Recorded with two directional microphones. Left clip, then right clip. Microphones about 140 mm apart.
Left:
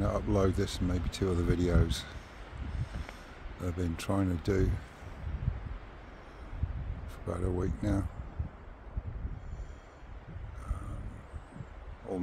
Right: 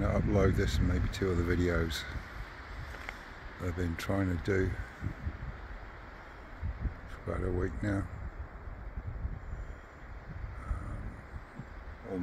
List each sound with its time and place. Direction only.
0.0 s speech: 25° left (ahead or behind)
3.6 s speech: 30° left (ahead or behind)
7.2 s speech: 25° left (ahead or behind)